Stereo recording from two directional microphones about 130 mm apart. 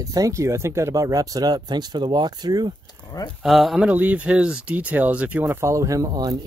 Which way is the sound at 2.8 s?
30° left (ahead or behind).